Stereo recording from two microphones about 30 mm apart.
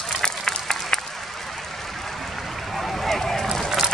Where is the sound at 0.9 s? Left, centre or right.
Centre.